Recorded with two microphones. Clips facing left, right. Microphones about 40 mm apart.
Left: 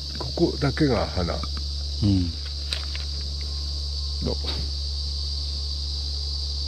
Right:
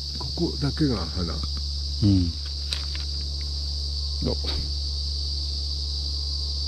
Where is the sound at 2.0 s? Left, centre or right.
Left.